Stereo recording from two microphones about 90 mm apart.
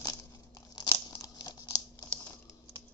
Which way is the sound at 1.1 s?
45° left (ahead or behind).